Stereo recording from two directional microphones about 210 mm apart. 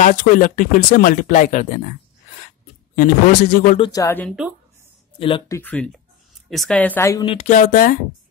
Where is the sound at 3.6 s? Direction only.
30° left (ahead or behind).